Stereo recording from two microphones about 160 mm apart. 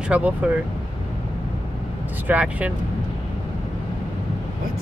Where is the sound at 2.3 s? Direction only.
10° right (ahead or behind).